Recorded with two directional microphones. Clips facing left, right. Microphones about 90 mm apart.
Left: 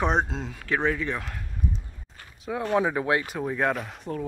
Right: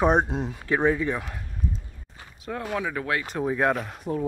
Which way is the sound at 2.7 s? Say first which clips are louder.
Left 5 dB; 20° left (ahead or behind).